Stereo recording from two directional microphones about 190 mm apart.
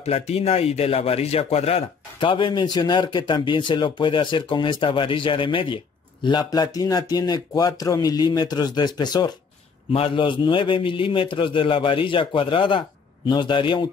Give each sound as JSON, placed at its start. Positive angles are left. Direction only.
{"t": 0.0, "sound": "speech", "side_deg": 35}